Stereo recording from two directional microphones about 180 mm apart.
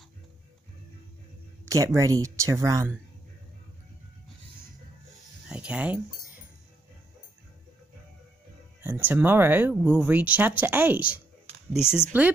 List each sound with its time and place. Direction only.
1.7 s speech: 15° right (ahead or behind)
5.5 s a sound: 5° right (ahead or behind)
8.8 s speech: 10° right (ahead or behind)